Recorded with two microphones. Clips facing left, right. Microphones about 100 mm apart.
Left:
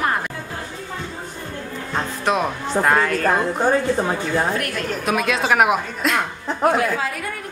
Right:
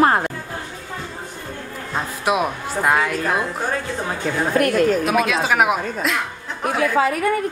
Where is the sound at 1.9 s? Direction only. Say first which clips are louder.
Even; 10° right (ahead or behind).